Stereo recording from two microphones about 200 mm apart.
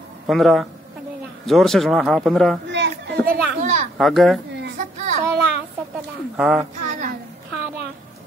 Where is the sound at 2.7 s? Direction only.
60° right (ahead or behind).